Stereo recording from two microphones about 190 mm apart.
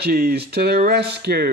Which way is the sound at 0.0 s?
55° right (ahead or behind).